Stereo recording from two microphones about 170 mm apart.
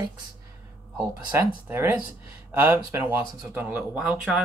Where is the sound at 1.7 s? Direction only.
15° right (ahead or behind).